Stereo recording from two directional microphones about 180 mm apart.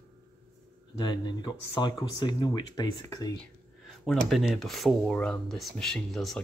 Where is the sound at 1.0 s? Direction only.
25° left (ahead or behind).